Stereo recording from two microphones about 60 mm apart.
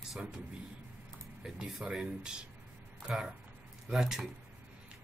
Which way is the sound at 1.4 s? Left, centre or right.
Centre.